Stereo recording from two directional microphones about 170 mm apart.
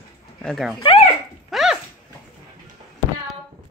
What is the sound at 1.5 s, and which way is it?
Dog, centre (ahead or behind).